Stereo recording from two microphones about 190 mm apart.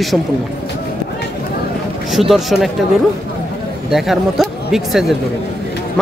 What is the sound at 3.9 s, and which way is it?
Speech, centre (ahead or behind).